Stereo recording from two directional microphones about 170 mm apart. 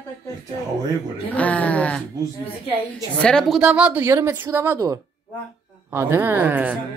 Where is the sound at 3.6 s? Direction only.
5° right (ahead or behind).